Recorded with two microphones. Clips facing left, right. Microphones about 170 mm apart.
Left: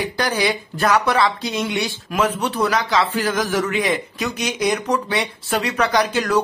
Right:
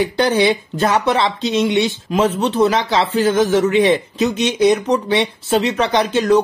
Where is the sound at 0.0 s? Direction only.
25° right (ahead or behind).